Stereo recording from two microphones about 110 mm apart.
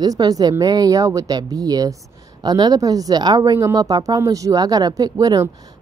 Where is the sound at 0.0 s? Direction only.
35° right (ahead or behind).